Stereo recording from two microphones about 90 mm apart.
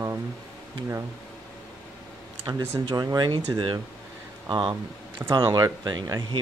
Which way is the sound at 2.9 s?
50° right (ahead or behind).